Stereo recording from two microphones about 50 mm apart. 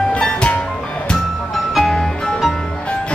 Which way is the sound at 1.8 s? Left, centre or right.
Centre.